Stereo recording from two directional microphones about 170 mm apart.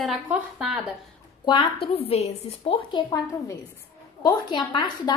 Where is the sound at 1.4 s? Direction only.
30° left (ahead or behind).